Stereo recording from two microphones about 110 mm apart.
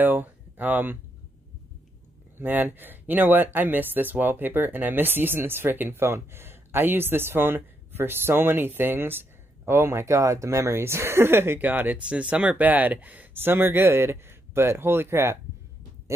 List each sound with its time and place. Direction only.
0.0 s speech: 15° right (ahead or behind)
2.3 s speech: 15° right (ahead or behind)